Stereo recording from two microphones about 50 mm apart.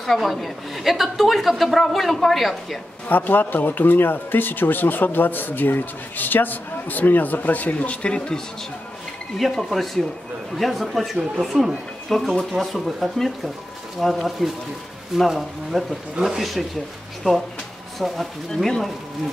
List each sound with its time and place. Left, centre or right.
0.0 s a woman's voice: centre
3.1 s speech: left; by 8.4 s centre
9.4 s a woman's voice: centre
17.9 s a woman's voice: centre
18.5 s speech: centre